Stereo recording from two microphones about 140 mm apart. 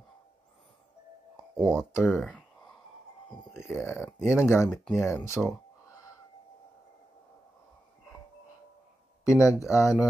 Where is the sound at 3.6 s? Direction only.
20° left (ahead or behind).